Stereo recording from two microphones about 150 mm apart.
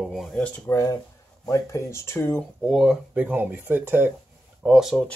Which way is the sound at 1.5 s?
20° left (ahead or behind).